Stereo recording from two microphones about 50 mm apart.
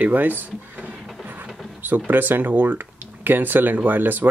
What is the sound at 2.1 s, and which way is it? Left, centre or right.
Speech, right.